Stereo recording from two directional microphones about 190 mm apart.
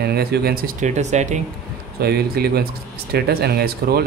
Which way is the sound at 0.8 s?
35° right (ahead or behind).